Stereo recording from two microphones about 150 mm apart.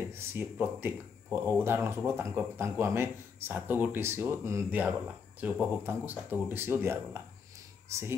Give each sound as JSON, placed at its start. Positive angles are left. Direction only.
{"t": 0.0, "sound": "speech", "side_deg": -15}